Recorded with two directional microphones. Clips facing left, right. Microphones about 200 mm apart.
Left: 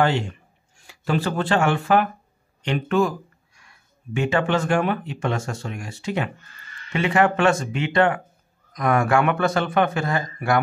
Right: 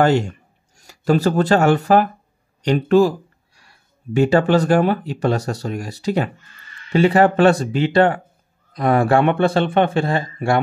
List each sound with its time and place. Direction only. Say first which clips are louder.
0.0 s a man's voice: right 5 dB; 45° right (ahead or behind)